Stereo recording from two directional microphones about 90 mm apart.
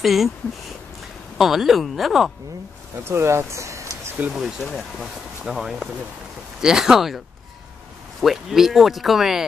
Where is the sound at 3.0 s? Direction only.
30° right (ahead or behind).